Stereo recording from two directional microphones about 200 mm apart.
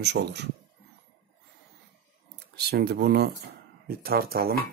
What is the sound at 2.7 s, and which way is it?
Speech, 50° right (ahead or behind).